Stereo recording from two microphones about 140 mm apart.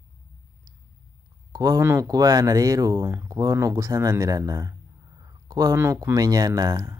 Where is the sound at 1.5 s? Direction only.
25° right (ahead or behind).